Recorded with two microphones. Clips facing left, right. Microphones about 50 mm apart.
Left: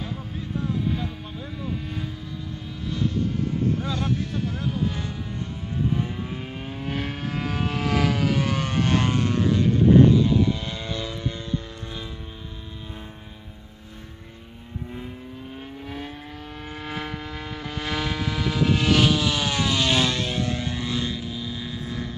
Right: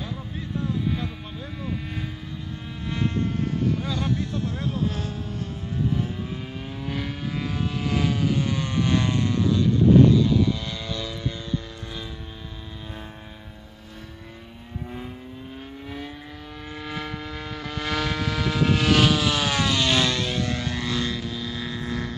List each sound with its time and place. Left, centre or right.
1.4 s vehicle: centre
6.7 s vehicle: left
16.7 s vehicle: left; by 22.1 s centre